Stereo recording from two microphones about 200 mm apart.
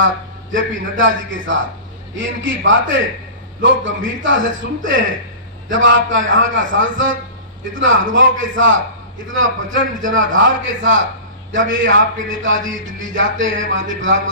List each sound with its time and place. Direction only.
0.0 s a man's voice: 70° right (ahead or behind)